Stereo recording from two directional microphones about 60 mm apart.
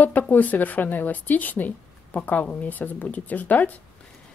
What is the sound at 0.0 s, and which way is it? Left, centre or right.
Speech, left.